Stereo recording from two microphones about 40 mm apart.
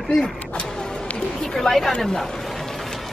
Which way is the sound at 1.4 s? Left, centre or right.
Centre.